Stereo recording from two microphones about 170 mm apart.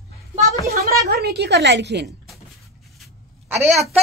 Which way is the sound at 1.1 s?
70° right (ahead or behind).